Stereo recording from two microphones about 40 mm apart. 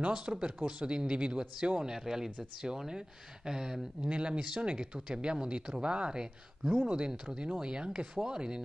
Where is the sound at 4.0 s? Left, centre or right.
Right.